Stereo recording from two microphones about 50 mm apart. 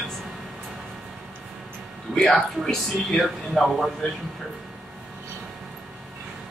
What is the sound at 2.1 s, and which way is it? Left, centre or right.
Speech, centre.